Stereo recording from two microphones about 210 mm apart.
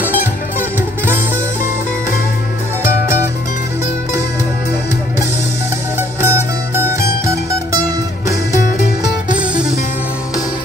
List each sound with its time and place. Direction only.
0.6 s music: 10° right (ahead or behind)
5.9 s music: 10° right (ahead or behind)
9.3 s music: 5° right (ahead or behind)